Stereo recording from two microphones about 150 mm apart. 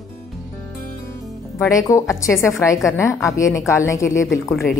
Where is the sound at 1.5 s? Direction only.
20° left (ahead or behind).